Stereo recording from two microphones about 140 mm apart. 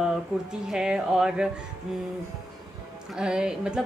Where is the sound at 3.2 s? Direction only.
5° right (ahead or behind).